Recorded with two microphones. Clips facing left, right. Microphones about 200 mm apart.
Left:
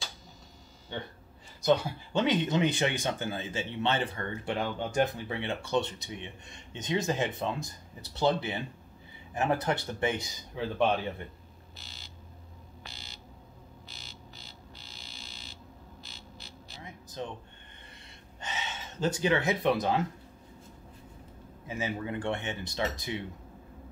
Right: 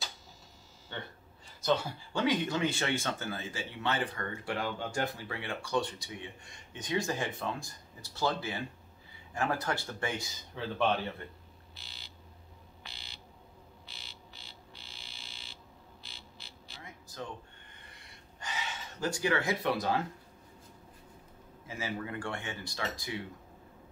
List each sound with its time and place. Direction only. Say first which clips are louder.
0.9 s speech: left 4 dB; 15° left (ahead or behind)
2.1 s speech: left 3 dB; 20° left (ahead or behind)
11.7 s fire alarm: left 4 dB; 45° left (ahead or behind)
13.8 s music: left 3 dB; 45° left (ahead or behind)
16.8 s a sound: left 4 dB; 20° left (ahead or behind)
18.4 s speech: left 2 dB; 25° left (ahead or behind)
21.6 s speech: left 4 dB; 20° left (ahead or behind)